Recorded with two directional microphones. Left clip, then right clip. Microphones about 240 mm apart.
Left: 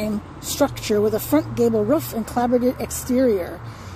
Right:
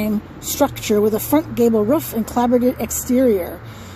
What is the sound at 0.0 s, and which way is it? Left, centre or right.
A woman's voice, centre.